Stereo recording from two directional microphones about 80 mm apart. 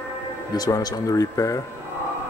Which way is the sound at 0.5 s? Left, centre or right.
Left.